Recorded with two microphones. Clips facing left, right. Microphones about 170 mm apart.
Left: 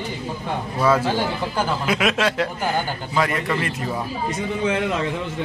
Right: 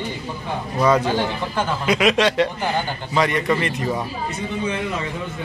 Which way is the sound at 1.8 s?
Centre (ahead or behind).